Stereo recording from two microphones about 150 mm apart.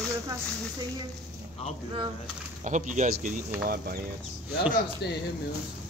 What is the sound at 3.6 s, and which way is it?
Speech, 90° right.